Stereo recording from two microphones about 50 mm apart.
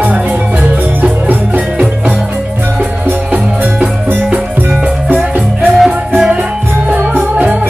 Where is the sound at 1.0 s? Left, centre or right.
Right.